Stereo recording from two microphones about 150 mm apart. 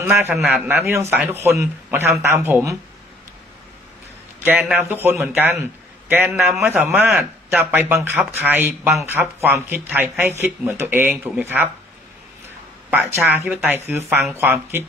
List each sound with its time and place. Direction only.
0.0 s speech: 15° right (ahead or behind)
4.4 s a man's voice: 10° right (ahead or behind)
6.5 s a man's voice: centre (ahead or behind)
6.8 s speech: 10° right (ahead or behind)
12.9 s speech: 15° right (ahead or behind)